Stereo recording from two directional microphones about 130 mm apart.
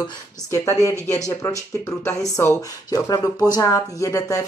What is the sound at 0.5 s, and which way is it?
Speech, 20° left (ahead or behind).